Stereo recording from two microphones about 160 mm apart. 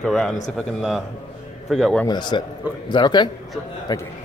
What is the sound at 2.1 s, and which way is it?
A man's voice, 25° left (ahead or behind).